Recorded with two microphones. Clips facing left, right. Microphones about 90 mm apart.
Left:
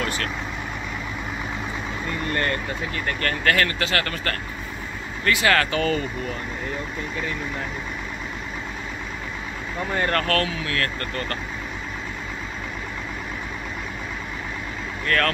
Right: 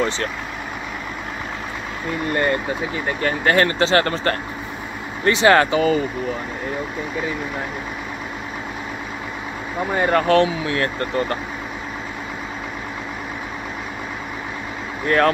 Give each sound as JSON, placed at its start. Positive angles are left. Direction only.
{"t": 2.3, "sound": "speech", "side_deg": -15}
{"t": 3.5, "sound": "speech", "side_deg": -30}
{"t": 5.8, "sound": "speech", "side_deg": -10}
{"t": 9.8, "sound": "speech", "side_deg": -10}
{"t": 15.0, "sound": "speech", "side_deg": -20}